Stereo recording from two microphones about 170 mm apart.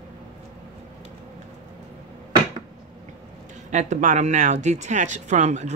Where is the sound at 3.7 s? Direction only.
45° right (ahead or behind).